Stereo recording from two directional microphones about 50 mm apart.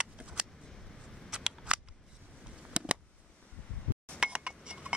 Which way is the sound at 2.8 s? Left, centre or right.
Centre.